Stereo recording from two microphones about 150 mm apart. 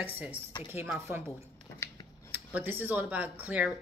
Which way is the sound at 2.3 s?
10° right (ahead or behind).